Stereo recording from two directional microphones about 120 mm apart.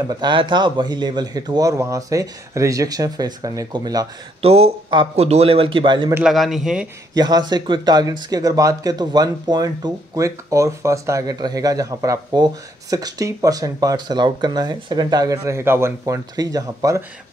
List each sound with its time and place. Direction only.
0.1 s speech: 40° right (ahead or behind)
4.4 s speech: 60° right (ahead or behind)
6.2 s speech: centre (ahead or behind)
7.2 s speech: 35° right (ahead or behind)